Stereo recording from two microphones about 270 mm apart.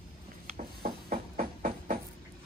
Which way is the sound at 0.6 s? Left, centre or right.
Right.